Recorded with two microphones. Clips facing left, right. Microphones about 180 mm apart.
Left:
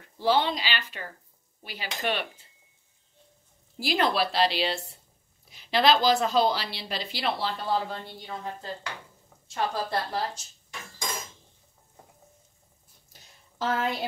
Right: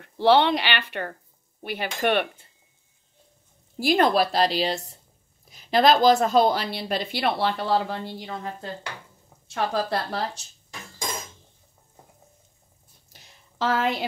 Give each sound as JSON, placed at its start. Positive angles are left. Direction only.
{"t": 0.0, "sound": "a woman's voice", "side_deg": -65}
{"t": 3.8, "sound": "a woman's voice", "side_deg": -50}
{"t": 9.5, "sound": "speech", "side_deg": -70}
{"t": 13.1, "sound": "a sound", "side_deg": -80}